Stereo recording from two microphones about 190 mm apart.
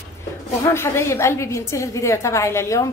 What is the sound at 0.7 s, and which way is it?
A woman's voice, 15° left (ahead or behind).